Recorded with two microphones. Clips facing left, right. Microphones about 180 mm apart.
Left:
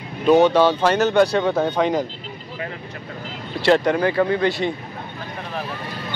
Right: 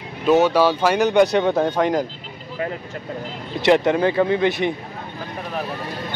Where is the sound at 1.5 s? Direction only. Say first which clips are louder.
Right 1 dB; 5° right (ahead or behind).